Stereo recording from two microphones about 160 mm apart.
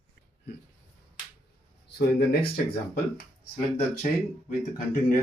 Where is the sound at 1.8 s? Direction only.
90° left.